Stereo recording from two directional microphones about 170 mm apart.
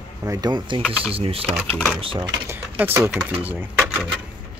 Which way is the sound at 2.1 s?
20° right (ahead or behind).